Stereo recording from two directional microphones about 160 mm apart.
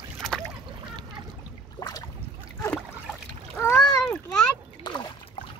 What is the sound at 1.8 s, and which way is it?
Boat, 25° left (ahead or behind).